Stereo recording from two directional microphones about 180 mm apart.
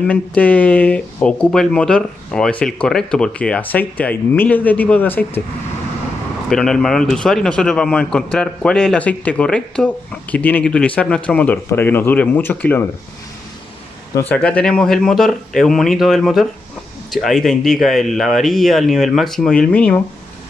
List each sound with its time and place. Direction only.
0.0 s speech: 5° left (ahead or behind)
6.5 s a man's voice: centre (ahead or behind)
14.3 s a man's voice: 5° left (ahead or behind)